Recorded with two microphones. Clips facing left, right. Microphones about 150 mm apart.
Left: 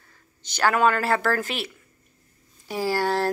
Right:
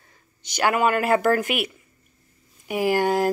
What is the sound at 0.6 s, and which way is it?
Speech, 10° right (ahead or behind).